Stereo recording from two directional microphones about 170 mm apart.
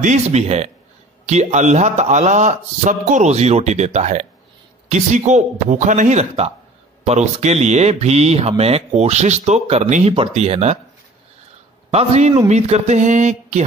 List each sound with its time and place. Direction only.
0.0 s a man's voice: 40° right (ahead or behind)
11.9 s a man's voice: 40° right (ahead or behind)